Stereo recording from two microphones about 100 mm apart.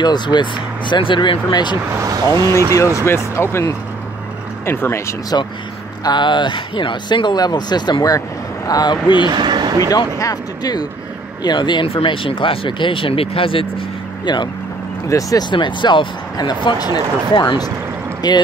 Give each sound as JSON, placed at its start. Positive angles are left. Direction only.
{"t": 0.0, "sound": "speech", "side_deg": 45}
{"t": 2.0, "sound": "speech", "side_deg": -40}
{"t": 3.3, "sound": "speech", "side_deg": 25}
{"t": 5.3, "sound": "speech", "side_deg": 40}
{"t": 6.0, "sound": "speech", "side_deg": 50}
{"t": 9.3, "sound": "a sound", "side_deg": -45}
{"t": 9.8, "sound": "speech", "side_deg": 35}
{"t": 11.9, "sound": "speech", "side_deg": 60}
{"t": 14.2, "sound": "speech", "side_deg": 50}
{"t": 15.0, "sound": "speech", "side_deg": 35}
{"t": 15.5, "sound": "speech", "side_deg": 50}